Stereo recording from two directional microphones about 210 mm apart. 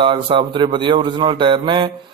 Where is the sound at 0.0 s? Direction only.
25° right (ahead or behind).